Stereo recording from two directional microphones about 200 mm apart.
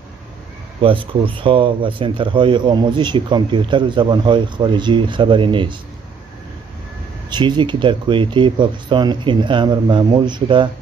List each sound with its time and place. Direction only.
0.8 s speech: 25° right (ahead or behind)
7.2 s speech: 20° right (ahead or behind)